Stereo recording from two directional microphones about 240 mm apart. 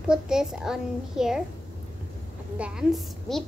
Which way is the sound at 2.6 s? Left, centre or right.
Centre.